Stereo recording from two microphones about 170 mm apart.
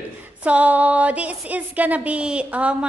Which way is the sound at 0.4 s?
10° right (ahead or behind).